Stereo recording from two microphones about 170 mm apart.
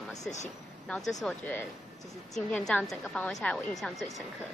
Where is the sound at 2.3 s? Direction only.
5° left (ahead or behind).